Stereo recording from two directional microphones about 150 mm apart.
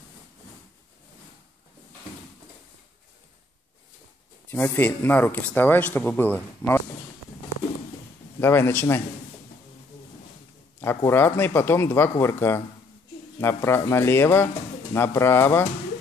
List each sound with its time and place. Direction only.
4.5 s speech: 10° left (ahead or behind)
8.4 s speech: 15° left (ahead or behind)
10.8 s speech: 15° left (ahead or behind)